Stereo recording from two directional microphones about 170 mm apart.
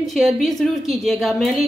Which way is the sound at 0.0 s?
Centre (ahead or behind).